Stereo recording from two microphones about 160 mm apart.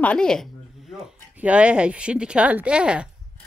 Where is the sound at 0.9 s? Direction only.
5° right (ahead or behind).